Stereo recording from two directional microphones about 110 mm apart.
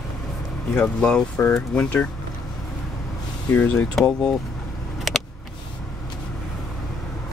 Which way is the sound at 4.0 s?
5° left (ahead or behind).